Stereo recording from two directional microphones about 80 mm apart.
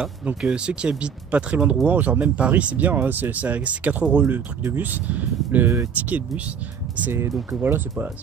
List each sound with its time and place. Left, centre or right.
0.4 s speech: centre
7.1 s speech: right